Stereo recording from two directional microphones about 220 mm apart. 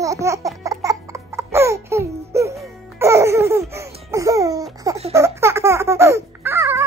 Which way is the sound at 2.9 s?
15° right (ahead or behind).